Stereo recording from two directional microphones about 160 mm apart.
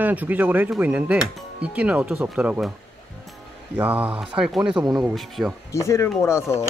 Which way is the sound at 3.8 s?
10° right (ahead or behind).